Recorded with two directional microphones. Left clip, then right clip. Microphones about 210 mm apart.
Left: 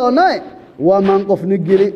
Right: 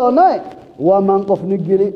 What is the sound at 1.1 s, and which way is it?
Speech, 45° left (ahead or behind).